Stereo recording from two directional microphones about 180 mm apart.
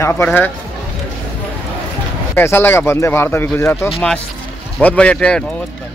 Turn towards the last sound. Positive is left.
turn(degrees=5)  # may be behind; listen again after turning